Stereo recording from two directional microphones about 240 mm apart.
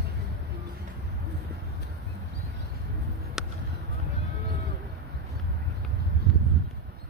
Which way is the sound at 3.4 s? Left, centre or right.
Centre.